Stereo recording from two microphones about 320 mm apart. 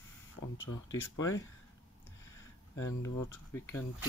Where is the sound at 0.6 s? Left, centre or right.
Left.